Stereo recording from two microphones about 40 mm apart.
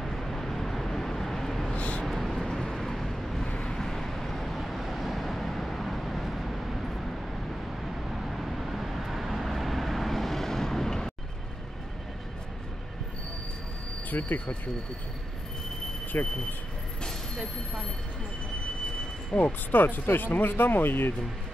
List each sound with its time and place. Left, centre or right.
0.0 s vehicle: centre
1.8 s vehicle: left
2.0 s vehicle: centre
2.3 s vehicle: centre
3.4 s vehicle: left
3.7 s vehicle: centre
14.1 s speech: left
16.1 s speech: left
19.3 s speech: left
19.7 s speech: left